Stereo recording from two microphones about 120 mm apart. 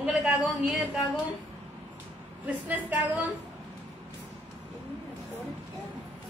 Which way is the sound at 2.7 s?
15° right (ahead or behind).